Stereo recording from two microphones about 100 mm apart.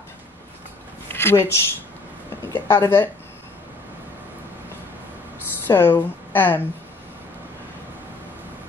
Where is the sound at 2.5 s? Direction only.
25° left (ahead or behind).